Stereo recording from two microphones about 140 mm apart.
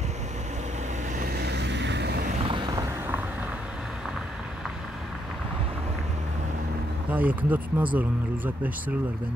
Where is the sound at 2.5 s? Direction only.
30° right (ahead or behind); by 4.7 s centre (ahead or behind).